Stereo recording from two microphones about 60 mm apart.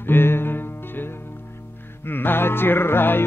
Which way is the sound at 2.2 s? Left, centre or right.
Left.